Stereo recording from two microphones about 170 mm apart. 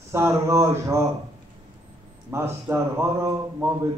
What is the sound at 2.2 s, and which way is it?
Mantra, 15° right (ahead or behind).